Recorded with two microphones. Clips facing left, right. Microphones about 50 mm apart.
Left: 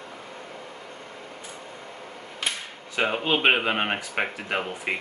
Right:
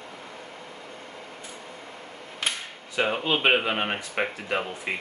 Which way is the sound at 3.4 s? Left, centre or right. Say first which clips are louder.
Left 1 dB; centre.